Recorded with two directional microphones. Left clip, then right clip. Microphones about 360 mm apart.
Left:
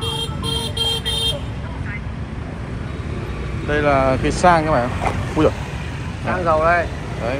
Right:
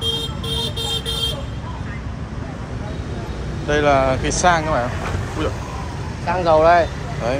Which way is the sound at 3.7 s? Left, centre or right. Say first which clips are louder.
Right 1 dB; centre.